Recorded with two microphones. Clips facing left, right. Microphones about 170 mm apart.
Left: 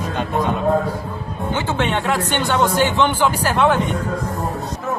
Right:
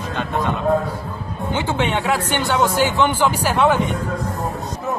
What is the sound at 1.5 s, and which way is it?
Speech, 10° right (ahead or behind).